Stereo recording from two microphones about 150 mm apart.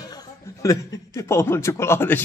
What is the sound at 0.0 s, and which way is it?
A man's voice, 25° left (ahead or behind).